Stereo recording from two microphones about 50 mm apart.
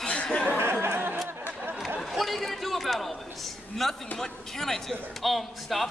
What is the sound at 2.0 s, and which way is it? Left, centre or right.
A man's voice, centre.